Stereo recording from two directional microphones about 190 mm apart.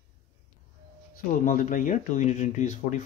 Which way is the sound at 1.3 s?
45° left (ahead or behind).